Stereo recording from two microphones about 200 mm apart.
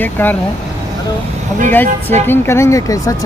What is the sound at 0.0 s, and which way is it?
Speech, 10° left (ahead or behind).